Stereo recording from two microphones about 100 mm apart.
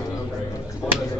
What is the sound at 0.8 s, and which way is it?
Speech, 5° left (ahead or behind).